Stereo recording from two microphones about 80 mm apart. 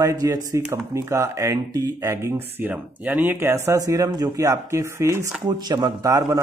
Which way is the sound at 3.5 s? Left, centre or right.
Right.